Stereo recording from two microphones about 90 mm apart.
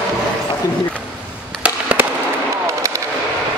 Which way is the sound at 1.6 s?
15° right (ahead or behind).